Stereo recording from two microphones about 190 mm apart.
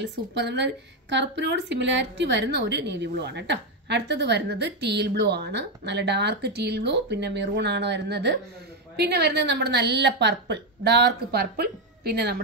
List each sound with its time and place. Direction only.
0.0 s a woman's voice: 65° right (ahead or behind)